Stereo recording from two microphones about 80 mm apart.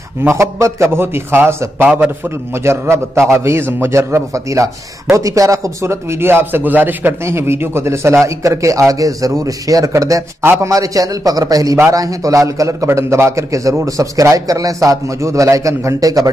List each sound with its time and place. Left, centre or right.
0.2 s speech: right
10.4 s a man's voice: right
10.7 s a man's voice: right